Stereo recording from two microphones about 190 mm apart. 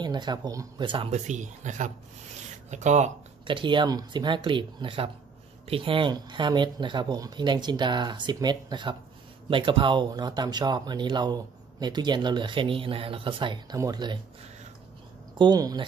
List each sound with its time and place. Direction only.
0.0 s speech: 25° right (ahead or behind)
1.1 s speech: 40° right (ahead or behind); by 14.2 s 25° right (ahead or behind)
15.3 s speech: 20° right (ahead or behind)